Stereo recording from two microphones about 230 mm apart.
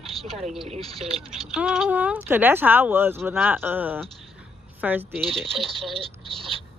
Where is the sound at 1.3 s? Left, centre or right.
Centre.